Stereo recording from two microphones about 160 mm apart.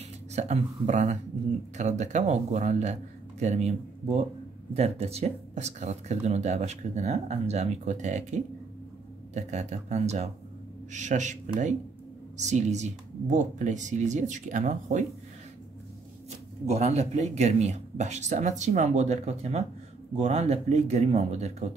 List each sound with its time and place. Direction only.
0.3 s speech: 45° right (ahead or behind)
16.6 s speech: 45° right (ahead or behind)